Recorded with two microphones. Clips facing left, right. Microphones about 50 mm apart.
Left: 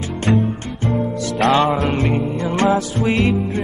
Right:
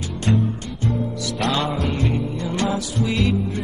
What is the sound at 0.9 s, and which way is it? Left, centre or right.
Music, left.